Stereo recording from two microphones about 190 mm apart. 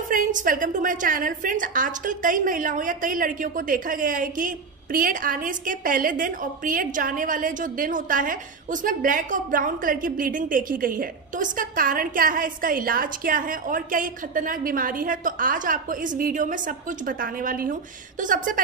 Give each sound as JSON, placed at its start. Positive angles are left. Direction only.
{"t": 0.1, "sound": "a woman's voice", "side_deg": -45}